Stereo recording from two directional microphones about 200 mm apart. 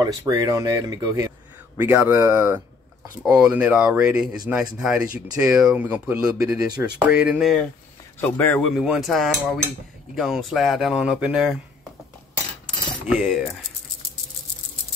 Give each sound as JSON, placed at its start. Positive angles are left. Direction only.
{"t": 0.0, "sound": "speech", "side_deg": -20}
{"t": 3.2, "sound": "cutlery", "side_deg": -5}
{"t": 8.2, "sound": "cutlery", "side_deg": 10}
{"t": 13.1, "sound": "cutlery", "side_deg": 0}